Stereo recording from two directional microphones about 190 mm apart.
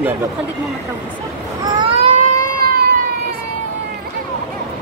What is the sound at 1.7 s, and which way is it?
Vehicle, 25° right (ahead or behind).